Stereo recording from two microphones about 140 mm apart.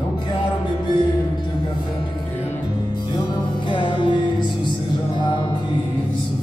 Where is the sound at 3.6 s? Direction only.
35° left (ahead or behind).